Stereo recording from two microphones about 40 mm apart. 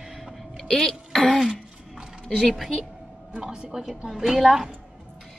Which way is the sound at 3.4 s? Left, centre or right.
Centre.